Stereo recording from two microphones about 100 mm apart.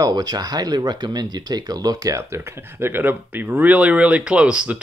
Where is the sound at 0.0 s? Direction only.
40° right (ahead or behind).